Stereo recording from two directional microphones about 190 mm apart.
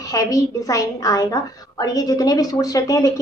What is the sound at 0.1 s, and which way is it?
A woman's voice, 15° left (ahead or behind).